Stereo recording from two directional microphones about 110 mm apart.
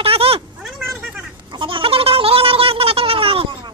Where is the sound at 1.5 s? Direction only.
50° right (ahead or behind).